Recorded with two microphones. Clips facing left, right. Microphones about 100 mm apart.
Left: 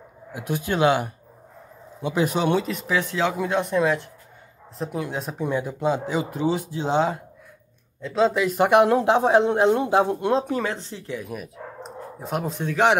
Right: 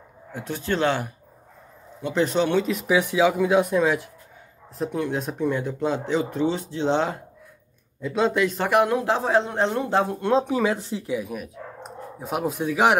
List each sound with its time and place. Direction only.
0.3 s speech: 10° left (ahead or behind)
2.0 s speech: 10° left (ahead or behind)
2.9 s speech: 15° right (ahead or behind); by 8.5 s centre (ahead or behind)
8.5 s speech: 20° left (ahead or behind)
10.3 s speech: 5° right (ahead or behind)